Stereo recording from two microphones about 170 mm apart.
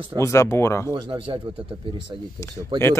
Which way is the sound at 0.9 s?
30° right (ahead or behind).